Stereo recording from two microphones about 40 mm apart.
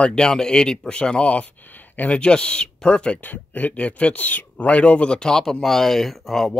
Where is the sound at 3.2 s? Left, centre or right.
Left.